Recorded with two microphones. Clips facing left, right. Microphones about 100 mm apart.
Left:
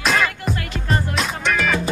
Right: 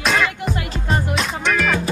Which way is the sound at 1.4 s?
Centre (ahead or behind).